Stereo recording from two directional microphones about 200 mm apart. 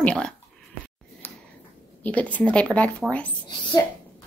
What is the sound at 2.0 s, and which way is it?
A woman's voice, 5° left (ahead or behind).